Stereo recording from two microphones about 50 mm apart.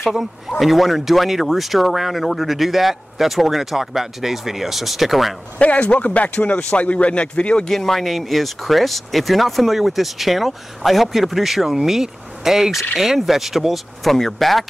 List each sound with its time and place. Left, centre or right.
0.0 s speech: centre
5.6 s speech: left
7.7 s speech: centre